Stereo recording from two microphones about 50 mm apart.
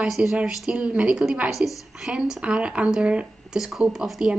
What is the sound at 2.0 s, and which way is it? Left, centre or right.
Speech, centre.